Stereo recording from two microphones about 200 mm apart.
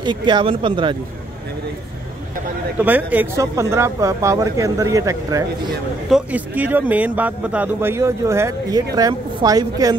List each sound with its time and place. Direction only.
0.0 s a woman's voice: 20° right (ahead or behind)
2.8 s speech: 10° right (ahead or behind)
6.0 s a woman's voice: 5° right (ahead or behind)